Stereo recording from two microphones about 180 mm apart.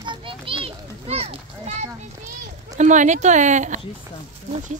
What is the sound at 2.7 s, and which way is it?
Speech, 40° right (ahead or behind).